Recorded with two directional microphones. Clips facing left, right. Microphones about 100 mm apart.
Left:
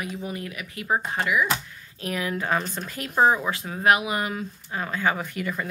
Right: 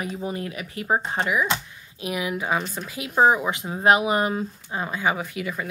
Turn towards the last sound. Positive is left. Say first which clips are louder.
# even
turn(degrees=-5)  # may be behind; listen again after turning